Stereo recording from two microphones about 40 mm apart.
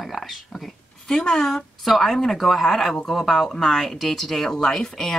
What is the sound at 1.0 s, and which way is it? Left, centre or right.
A woman's voice, centre.